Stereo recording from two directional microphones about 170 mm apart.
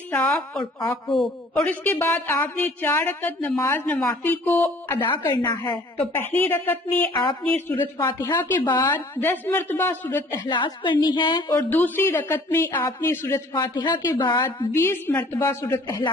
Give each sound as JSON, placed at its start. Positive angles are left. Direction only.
{"t": 0.1, "sound": "a woman's voice", "side_deg": 10}
{"t": 5.0, "sound": "a woman's voice", "side_deg": 30}
{"t": 5.9, "sound": "a woman's voice", "side_deg": 10}
{"t": 10.3, "sound": "a woman's voice", "side_deg": 25}
{"t": 11.5, "sound": "a woman's voice", "side_deg": 10}
{"t": 13.5, "sound": "a woman's voice", "side_deg": 25}
{"t": 14.7, "sound": "a woman's voice", "side_deg": 15}